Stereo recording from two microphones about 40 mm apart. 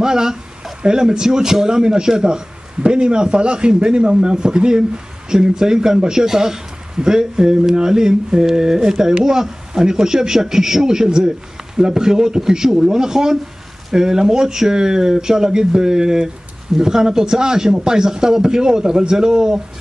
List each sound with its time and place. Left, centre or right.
0.0 s speech: centre